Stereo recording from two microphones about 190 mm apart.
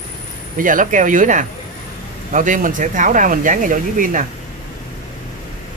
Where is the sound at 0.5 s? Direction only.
45° right (ahead or behind).